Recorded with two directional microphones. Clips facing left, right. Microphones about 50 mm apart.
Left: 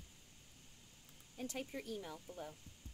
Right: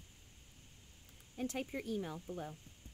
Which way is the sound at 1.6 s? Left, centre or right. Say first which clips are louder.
Right 4 dB; right.